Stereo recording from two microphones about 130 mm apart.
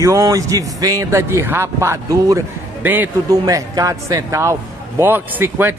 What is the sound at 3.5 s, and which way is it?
A man's voice, 25° right (ahead or behind).